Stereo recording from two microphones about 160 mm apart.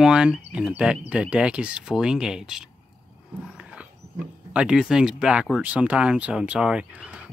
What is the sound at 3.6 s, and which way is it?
Roaring cats, 5° right (ahead or behind).